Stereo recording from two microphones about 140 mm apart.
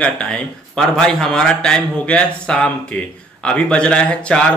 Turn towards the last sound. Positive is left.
turn(degrees=10)  # may be behind; listen again after turning